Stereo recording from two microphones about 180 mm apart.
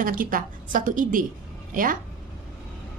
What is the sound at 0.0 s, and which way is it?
A woman's voice, 50° right (ahead or behind).